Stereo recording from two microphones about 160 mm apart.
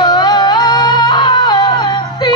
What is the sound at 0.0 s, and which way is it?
Music, 25° left (ahead or behind).